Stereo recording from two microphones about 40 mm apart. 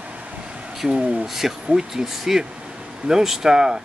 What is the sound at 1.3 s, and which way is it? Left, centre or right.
Speech, centre.